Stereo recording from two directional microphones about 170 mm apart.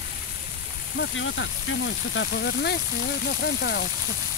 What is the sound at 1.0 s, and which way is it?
Speech, 90° left.